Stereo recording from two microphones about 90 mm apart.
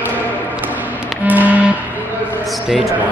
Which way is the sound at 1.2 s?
20° right (ahead or behind).